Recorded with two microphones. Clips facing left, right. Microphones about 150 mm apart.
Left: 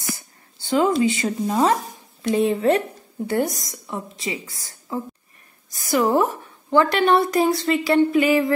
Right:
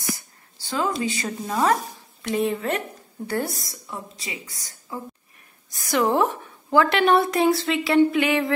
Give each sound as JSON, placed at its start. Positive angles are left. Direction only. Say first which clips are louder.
{"t": 0.7, "sound": "a woman's voice", "louder": "left 7 dB", "side_deg": 25}
{"t": 5.7, "sound": "a woman's voice", "louder": "left 2 dB", "side_deg": 0}